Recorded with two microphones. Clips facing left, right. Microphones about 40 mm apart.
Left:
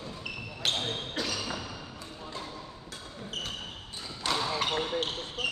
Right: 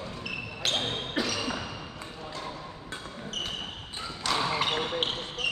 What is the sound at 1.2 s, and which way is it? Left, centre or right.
Basketball bounce, centre.